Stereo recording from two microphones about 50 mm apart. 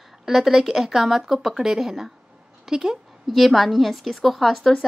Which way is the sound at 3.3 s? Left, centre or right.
Centre.